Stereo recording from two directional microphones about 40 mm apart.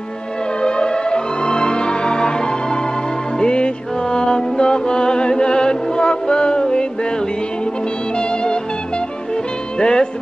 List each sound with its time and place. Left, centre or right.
0.6 s music: left